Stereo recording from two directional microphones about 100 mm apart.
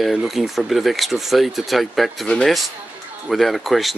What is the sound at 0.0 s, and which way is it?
Speech, 5° right (ahead or behind).